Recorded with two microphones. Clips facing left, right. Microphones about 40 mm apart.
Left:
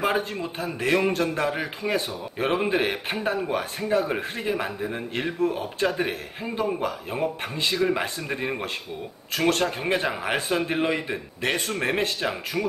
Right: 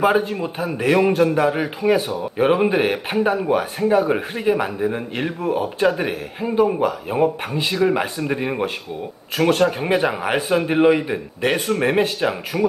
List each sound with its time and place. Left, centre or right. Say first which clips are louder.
0.0 s a man's voice: right 7 dB; centre